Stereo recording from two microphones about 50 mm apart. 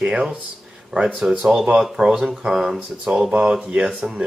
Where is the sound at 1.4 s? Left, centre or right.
Centre.